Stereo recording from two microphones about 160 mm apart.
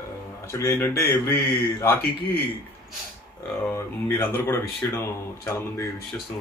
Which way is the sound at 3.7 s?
15° left (ahead or behind).